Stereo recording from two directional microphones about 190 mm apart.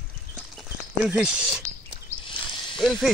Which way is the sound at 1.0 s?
5° right (ahead or behind).